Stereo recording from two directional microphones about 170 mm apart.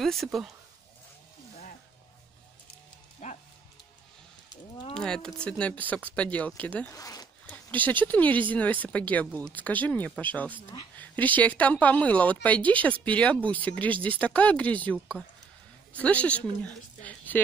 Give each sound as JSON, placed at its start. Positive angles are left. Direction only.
{"t": 0.0, "sound": "speech", "side_deg": 0}
{"t": 3.2, "sound": "music", "side_deg": 45}
{"t": 4.9, "sound": "speech", "side_deg": 5}
{"t": 6.9, "sound": "speech", "side_deg": 20}
{"t": 7.4, "sound": "a woman's voice", "side_deg": 10}